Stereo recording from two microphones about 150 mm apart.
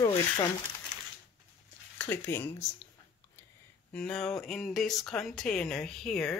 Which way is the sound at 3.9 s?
5° left (ahead or behind).